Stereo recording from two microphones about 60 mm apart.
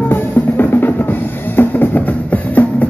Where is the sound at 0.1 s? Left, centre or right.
Left.